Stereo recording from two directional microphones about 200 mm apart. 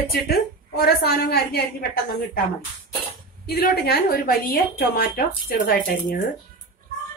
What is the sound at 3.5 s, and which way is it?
A woman's voice, 50° left (ahead or behind).